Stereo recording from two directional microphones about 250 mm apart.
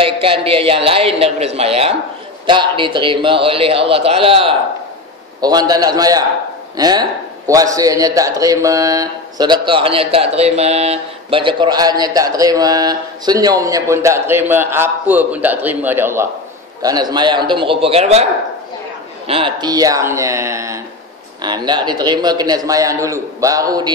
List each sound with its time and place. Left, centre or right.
0.0 s a man's voice: right
19.2 s a man's voice: right